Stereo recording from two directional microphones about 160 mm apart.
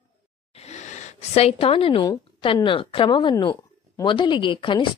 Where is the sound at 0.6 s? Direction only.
45° left (ahead or behind).